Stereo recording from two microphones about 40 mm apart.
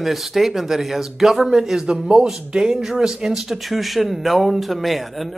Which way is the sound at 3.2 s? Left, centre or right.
Centre.